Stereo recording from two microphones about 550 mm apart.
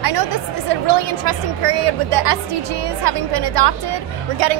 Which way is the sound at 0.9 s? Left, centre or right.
Right.